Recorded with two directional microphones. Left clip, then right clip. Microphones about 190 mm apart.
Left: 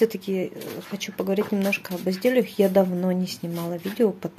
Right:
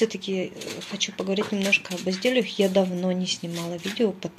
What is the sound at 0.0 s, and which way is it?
Speech, 20° left (ahead or behind).